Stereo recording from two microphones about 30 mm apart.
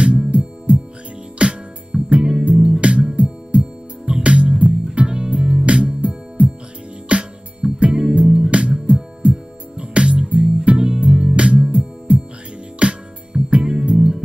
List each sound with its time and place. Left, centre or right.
0.0 s music: right
10.9 s music: right
13.7 s music: right